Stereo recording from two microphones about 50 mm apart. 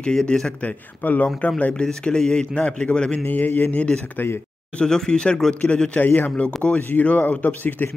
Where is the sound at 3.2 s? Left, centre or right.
Left.